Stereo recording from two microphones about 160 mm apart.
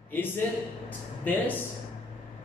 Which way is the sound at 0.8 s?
10° left (ahead or behind).